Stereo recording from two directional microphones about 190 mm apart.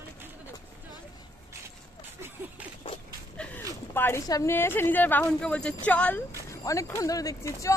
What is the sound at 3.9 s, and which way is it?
A woman's voice, 15° left (ahead or behind).